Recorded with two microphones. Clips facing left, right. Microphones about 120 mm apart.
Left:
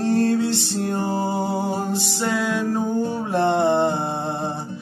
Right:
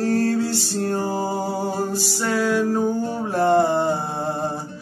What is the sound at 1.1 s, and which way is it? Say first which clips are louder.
Music: left 1 dB; 5° right (ahead or behind).